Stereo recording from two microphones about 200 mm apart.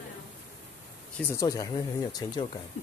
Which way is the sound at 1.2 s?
15° left (ahead or behind).